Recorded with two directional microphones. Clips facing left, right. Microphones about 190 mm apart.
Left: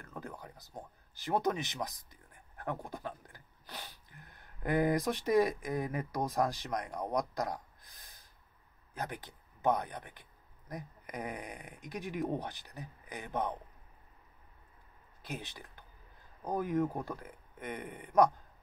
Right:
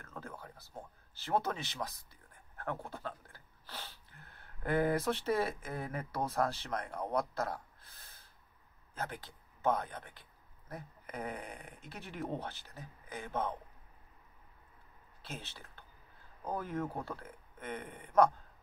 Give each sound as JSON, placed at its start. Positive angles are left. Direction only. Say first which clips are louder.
{"t": 0.0, "sound": "speech", "louder": "left 2 dB", "side_deg": 15}
{"t": 15.2, "sound": "speech", "louder": "left 4 dB", "side_deg": 15}